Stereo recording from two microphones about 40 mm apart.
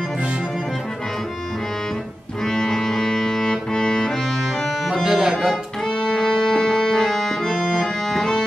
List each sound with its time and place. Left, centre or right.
2.4 s music: centre
5.0 s music: centre
5.9 s music: centre